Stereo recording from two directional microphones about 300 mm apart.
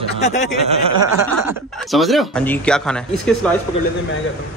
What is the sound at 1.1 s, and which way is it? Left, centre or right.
A man's voice, centre.